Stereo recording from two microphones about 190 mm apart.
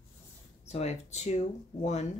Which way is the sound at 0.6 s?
35° left (ahead or behind).